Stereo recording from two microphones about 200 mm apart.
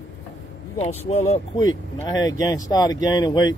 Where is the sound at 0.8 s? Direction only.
35° left (ahead or behind).